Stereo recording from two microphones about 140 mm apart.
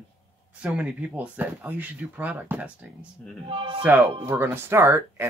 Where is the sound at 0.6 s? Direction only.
10° right (ahead or behind).